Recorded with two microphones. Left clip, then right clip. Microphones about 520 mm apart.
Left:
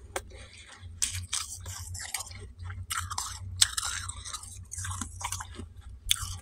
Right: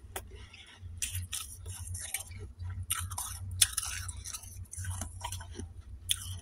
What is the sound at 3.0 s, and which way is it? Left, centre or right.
Chewing, right.